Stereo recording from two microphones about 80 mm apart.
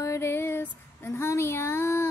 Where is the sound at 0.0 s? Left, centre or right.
Left.